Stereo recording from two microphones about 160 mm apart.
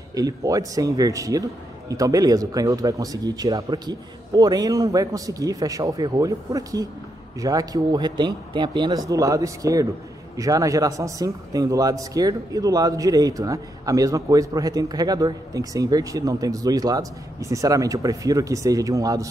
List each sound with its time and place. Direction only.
0.1 s a man's voice: 20° right (ahead or behind)